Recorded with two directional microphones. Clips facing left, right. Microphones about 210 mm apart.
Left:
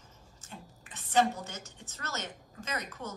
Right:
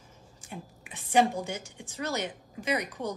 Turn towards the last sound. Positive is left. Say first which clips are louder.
# right 8 dB
turn(degrees=-15)  # may be behind; listen again after turning